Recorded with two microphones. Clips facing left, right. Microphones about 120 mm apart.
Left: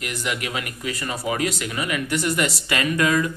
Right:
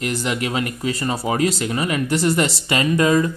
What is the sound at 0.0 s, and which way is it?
Speech, 30° right (ahead or behind).